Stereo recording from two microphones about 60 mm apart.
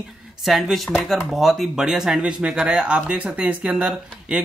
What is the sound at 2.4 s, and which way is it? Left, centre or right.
Speech, centre.